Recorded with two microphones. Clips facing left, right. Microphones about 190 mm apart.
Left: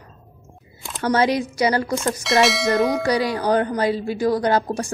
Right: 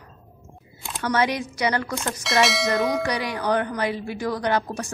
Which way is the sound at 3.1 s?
30° left (ahead or behind).